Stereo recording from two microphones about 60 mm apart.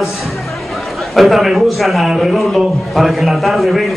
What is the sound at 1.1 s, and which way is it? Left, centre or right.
A man's voice, centre.